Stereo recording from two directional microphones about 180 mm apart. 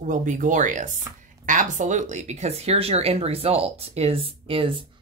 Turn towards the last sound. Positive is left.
turn(degrees=-30)  # may be behind; listen again after turning